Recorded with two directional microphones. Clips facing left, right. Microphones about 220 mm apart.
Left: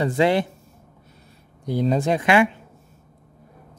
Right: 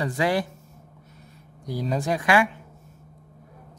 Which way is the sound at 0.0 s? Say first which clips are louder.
Left 5 dB; 25° left (ahead or behind).